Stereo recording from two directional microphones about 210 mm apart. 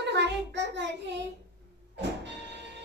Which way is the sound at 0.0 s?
55° right (ahead or behind).